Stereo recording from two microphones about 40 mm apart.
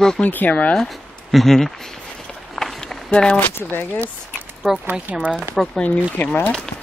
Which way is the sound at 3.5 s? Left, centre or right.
Left.